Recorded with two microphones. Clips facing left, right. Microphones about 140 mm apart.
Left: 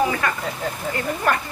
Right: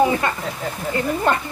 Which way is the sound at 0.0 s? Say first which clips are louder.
Right 3 dB; 25° right (ahead or behind).